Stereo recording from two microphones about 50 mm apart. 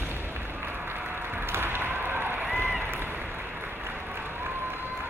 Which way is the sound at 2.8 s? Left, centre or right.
Right.